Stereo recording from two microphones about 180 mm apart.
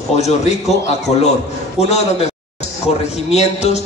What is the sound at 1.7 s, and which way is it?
A man's voice, 35° left (ahead or behind).